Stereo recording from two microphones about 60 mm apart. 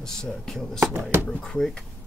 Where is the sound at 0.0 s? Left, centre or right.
Centre.